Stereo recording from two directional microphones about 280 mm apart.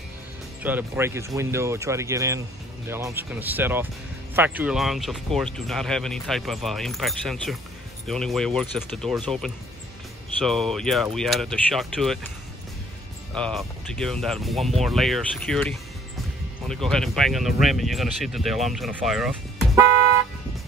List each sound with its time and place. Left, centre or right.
0.6 s speech: centre
13.3 s speech: centre